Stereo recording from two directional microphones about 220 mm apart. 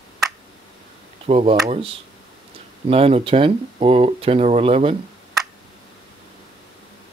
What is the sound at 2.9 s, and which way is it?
Speech, 25° right (ahead or behind).